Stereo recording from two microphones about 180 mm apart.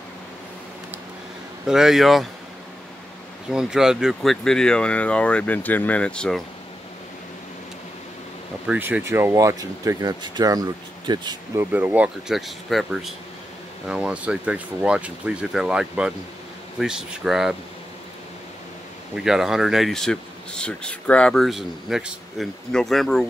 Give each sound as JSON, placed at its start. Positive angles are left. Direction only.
{"t": 1.7, "sound": "speech", "side_deg": -5}
{"t": 3.4, "sound": "speech", "side_deg": -5}
{"t": 8.6, "sound": "speech", "side_deg": -10}
{"t": 11.7, "sound": "speech", "side_deg": -10}
{"t": 19.1, "sound": "speech", "side_deg": -5}